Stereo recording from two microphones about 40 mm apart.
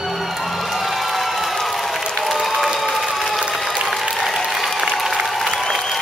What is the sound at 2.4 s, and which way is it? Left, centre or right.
Applause, centre.